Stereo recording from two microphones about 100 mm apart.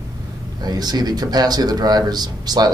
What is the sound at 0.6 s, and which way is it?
Speech, 45° right (ahead or behind).